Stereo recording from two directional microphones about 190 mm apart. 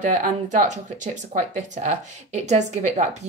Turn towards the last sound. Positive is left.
turn(degrees=-35)  # may be behind; listen again after turning